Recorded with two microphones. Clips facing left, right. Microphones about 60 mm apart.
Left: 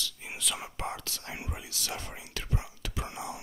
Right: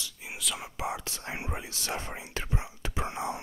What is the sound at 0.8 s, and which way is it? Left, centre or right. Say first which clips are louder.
Whispering: right 5 dB; right.